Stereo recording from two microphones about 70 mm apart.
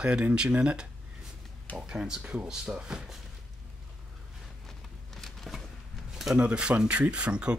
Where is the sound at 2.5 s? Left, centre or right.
Centre.